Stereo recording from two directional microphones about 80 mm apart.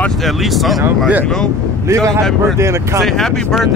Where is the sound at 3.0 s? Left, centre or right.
Centre.